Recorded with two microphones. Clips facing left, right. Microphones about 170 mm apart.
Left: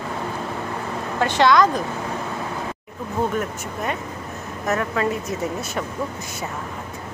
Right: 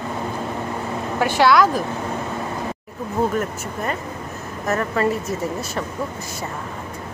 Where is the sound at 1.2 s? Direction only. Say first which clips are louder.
Right 1 dB; 10° right (ahead or behind).